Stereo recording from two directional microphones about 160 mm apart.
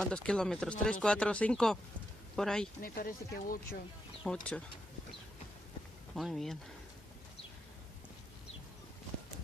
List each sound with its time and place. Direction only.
0.0 s speech: 5° left (ahead or behind)
2.8 s speech: 65° left (ahead or behind)
4.2 s speech: 5° left (ahead or behind)
6.1 s speech: centre (ahead or behind)